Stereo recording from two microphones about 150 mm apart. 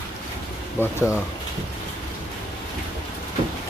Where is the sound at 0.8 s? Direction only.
15° left (ahead or behind).